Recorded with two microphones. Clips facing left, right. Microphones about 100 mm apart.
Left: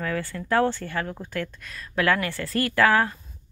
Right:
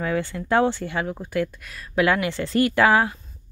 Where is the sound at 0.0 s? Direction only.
20° right (ahead or behind).